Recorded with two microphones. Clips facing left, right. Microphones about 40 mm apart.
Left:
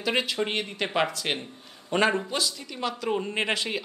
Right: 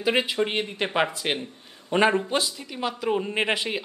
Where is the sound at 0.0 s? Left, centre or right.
Centre.